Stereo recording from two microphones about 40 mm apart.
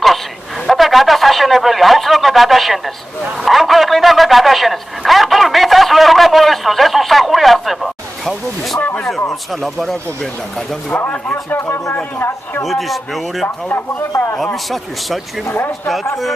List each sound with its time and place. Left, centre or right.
0.7 s a sound: centre
3.4 s a man's voice: centre
11.5 s speech: left
12.6 s a man's voice: centre